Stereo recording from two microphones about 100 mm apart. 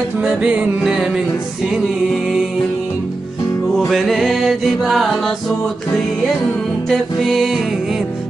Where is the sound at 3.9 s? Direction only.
Centre (ahead or behind).